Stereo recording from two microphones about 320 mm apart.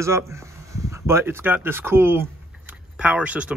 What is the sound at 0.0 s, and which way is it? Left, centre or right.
Speech, centre.